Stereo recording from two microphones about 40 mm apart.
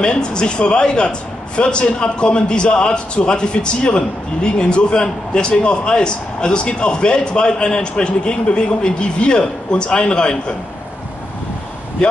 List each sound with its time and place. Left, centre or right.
0.0 s a man's voice: left